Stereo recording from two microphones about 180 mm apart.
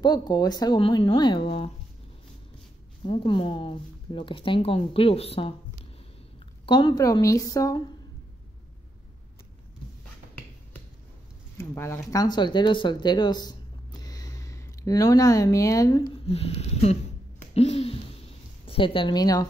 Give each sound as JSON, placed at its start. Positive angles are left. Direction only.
{"t": 0.0, "sound": "speech", "side_deg": 25}
{"t": 3.0, "sound": "speech", "side_deg": 30}
{"t": 6.6, "sound": "speech", "side_deg": 25}
{"t": 11.5, "sound": "speech", "side_deg": 15}
{"t": 16.3, "sound": "speech", "side_deg": 35}
{"t": 17.6, "sound": "a sound", "side_deg": 35}